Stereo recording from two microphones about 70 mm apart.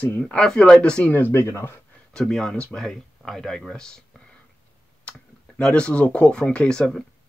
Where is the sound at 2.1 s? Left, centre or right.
Centre.